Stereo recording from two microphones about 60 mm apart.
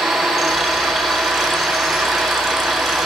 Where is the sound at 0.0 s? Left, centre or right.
Centre.